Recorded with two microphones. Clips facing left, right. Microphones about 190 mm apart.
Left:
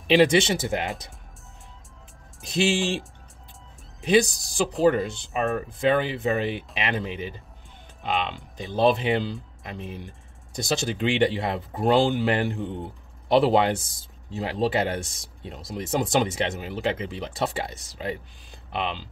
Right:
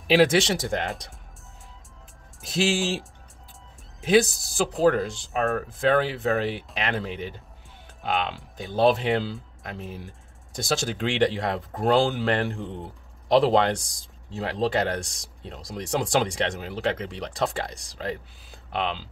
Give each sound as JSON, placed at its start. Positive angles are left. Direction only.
{"t": 0.0, "sound": "speech", "side_deg": 0}
{"t": 2.4, "sound": "speech", "side_deg": 0}